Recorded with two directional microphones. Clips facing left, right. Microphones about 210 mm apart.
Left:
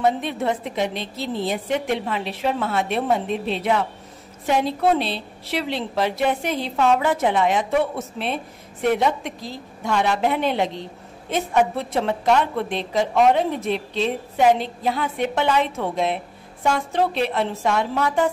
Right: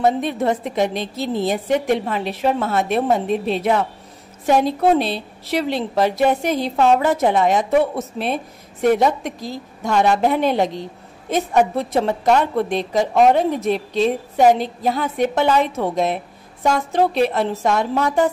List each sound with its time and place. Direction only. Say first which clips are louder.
0.0 s a woman's voice: right 3 dB; 45° right (ahead or behind)